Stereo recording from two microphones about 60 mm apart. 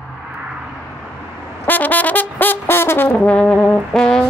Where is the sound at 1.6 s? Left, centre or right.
Left.